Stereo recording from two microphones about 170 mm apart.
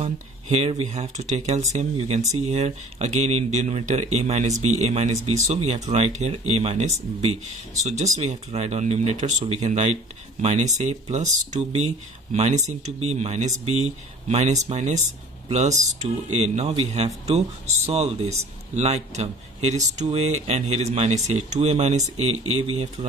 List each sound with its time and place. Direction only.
0.0 s speech: 40° right (ahead or behind)